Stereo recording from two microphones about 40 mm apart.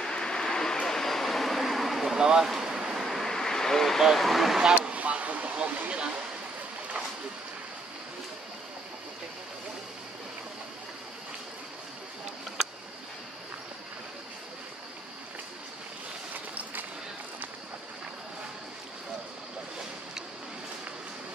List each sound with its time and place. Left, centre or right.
0.0 s a sound: left
0.8 s vehicle: centre
2.1 s speech: centre
2.5 s a sound: centre
3.0 s vehicle: centre
4.0 s speech: centre
4.7 s speech: right